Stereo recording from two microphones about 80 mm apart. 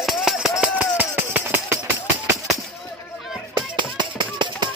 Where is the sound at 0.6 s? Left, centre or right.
Centre.